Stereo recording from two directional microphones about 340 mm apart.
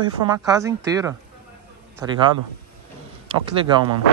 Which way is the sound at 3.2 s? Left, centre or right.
Centre.